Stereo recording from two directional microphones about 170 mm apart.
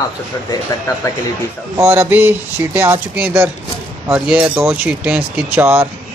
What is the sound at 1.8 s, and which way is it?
Speech, 15° right (ahead or behind).